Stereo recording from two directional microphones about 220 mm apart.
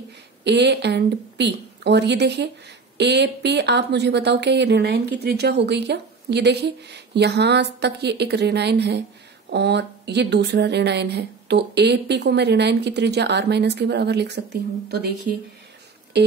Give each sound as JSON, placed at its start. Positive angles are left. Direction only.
{"t": 0.4, "sound": "speech", "side_deg": -50}